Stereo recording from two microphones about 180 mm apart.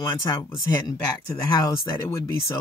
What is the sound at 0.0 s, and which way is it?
Speech, 25° left (ahead or behind).